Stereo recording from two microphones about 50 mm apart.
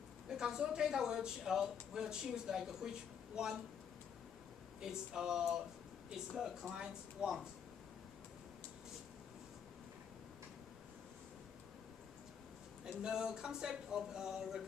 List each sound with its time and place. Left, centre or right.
0.3 s speech: centre
4.8 s speech: centre
12.8 s speech: centre